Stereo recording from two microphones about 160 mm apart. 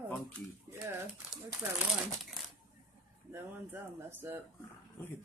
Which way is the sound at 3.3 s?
15° right (ahead or behind).